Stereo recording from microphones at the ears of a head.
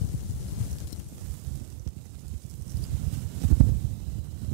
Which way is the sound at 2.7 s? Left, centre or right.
Right.